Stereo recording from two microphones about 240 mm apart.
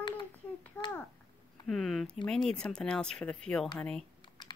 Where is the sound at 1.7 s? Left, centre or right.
Centre.